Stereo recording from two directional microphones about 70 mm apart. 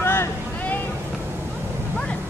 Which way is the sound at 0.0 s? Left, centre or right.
Left.